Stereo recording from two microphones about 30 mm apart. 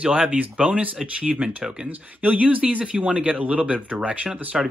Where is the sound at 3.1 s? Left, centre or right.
Right.